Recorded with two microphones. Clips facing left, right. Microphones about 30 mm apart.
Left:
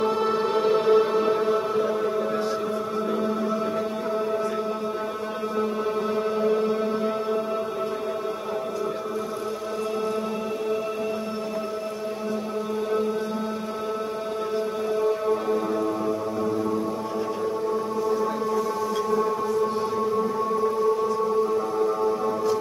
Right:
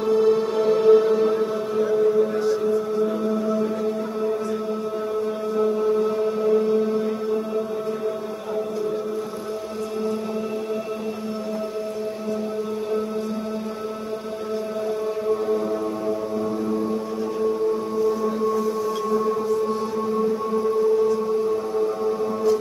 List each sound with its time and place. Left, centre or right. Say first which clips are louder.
0.0 s music: right 4 dB; left
5.9 s music: right 4 dB; centre
21.7 s music: right 1 dB; centre